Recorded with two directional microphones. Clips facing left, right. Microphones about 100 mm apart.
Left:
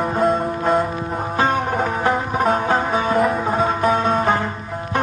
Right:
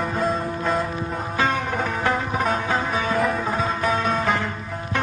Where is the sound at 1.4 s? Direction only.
35° left (ahead or behind).